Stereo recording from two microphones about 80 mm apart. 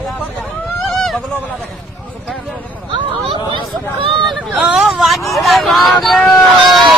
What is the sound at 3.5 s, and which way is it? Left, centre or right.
Hubbub, right.